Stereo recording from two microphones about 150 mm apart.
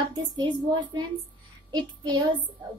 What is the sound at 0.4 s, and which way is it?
A woman's voice, 30° right (ahead or behind).